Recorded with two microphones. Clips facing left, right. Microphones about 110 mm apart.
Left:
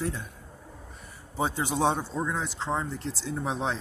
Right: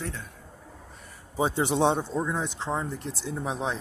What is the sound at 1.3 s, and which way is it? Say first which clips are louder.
A man's voice: right 3 dB; 20° right (ahead or behind).